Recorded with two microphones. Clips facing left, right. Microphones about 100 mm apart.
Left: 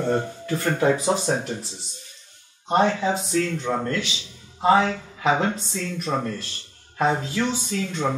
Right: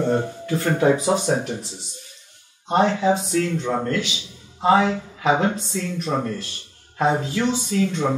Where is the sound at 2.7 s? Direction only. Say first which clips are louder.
Right 2 dB; 15° right (ahead or behind).